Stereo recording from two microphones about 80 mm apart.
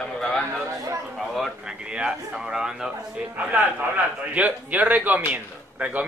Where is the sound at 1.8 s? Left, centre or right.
Centre.